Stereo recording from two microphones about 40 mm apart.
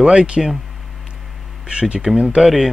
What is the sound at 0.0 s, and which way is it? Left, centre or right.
Speech, right.